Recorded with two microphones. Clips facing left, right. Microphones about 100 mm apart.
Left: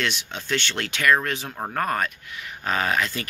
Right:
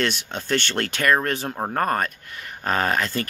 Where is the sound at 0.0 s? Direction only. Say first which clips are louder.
Right 3 dB; 45° right (ahead or behind).